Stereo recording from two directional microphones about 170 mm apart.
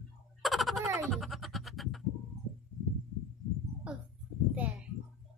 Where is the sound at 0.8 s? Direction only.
15° right (ahead or behind).